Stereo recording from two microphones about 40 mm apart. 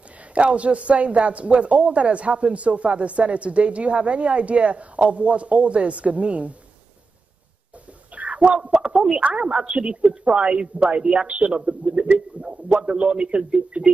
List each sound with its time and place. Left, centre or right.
0.3 s a man's voice: right
8.1 s a sound: right
8.7 s speech: centre